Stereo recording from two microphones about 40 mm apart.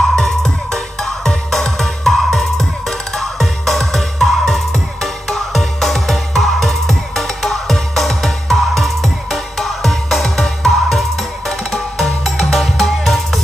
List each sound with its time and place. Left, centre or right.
0.0 s music: centre
10.2 s music: centre
10.6 s music: centre